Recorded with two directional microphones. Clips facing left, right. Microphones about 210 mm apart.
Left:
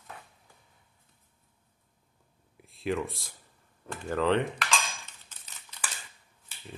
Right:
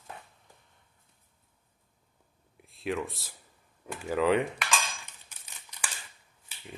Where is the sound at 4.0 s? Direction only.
5° right (ahead or behind).